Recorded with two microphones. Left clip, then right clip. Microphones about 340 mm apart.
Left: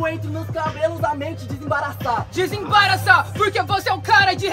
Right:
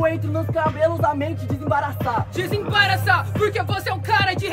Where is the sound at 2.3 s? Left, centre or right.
Centre.